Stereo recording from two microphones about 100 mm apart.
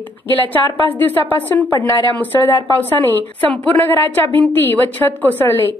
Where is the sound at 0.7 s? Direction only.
60° right (ahead or behind).